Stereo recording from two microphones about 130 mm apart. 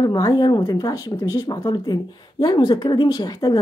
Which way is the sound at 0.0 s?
30° left (ahead or behind).